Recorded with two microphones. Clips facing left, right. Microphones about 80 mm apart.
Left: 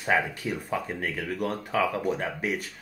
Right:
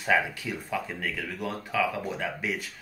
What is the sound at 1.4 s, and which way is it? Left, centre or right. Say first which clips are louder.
Speech: left 2 dB; left.